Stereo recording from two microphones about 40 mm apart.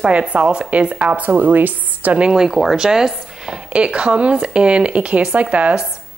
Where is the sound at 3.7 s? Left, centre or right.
Right.